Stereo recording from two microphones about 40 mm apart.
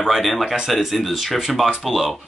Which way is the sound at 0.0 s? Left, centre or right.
Centre.